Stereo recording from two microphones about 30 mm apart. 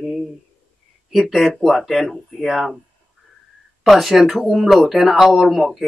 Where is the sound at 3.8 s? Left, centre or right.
Centre.